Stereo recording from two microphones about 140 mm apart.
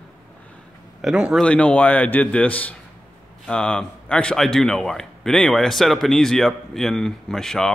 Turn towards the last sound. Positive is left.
turn(degrees=5)  # may be behind; listen again after turning